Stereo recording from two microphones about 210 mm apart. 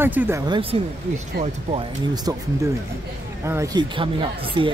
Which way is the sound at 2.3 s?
20° right (ahead or behind).